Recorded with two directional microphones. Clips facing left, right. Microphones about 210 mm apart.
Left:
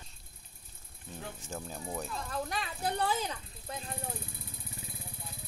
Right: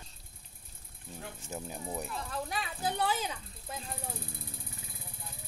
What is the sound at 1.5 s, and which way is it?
Speech, 20° right (ahead or behind).